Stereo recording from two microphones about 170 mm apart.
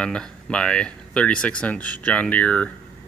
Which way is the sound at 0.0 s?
5° left (ahead or behind).